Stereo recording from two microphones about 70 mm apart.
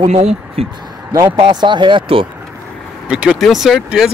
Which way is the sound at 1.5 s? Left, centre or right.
Right.